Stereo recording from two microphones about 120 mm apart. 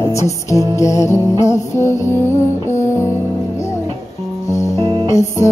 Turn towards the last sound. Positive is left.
turn(degrees=25)  # may be behind; listen again after turning